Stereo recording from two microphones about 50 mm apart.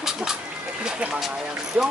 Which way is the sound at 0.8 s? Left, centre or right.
Centre.